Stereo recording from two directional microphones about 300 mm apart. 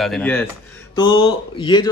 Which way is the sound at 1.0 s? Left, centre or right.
Centre.